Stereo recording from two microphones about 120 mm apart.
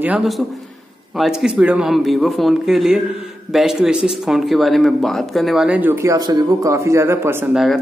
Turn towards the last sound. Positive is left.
turn(degrees=-20)  # may be behind; listen again after turning